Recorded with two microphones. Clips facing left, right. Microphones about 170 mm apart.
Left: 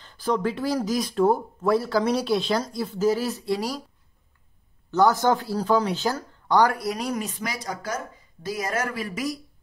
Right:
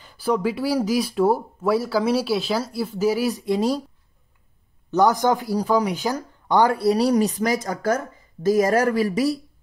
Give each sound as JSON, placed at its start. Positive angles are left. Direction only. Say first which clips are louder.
{"t": 0.0, "sound": "speech", "louder": "right 3 dB", "side_deg": -10}
{"t": 4.9, "sound": "speech", "louder": "right 2 dB", "side_deg": -15}